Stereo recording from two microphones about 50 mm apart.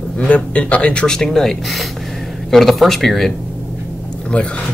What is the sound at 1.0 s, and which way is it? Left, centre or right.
Speech, centre.